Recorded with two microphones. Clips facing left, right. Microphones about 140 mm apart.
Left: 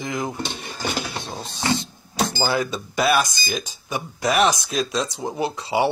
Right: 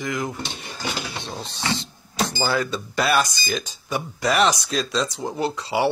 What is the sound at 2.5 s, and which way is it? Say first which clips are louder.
Speech: even; 15° left (ahead or behind).